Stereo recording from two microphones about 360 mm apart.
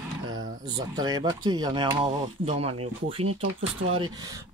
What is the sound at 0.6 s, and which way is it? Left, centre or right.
Speech, centre.